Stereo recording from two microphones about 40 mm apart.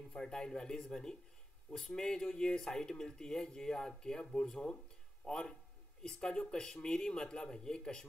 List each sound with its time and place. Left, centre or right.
0.2 s speech: centre